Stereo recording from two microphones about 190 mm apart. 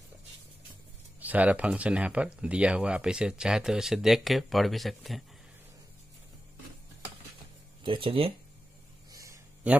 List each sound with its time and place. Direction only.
1.2 s speech: 10° right (ahead or behind)
7.8 s speech: 25° right (ahead or behind)
9.1 s a sound: 15° right (ahead or behind)